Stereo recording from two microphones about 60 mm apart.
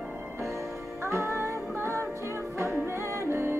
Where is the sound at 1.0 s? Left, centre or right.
Right.